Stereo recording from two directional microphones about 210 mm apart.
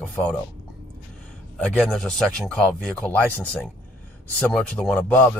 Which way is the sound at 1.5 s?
5° left (ahead or behind).